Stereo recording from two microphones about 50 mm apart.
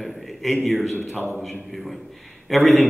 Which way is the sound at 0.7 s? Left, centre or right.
Centre.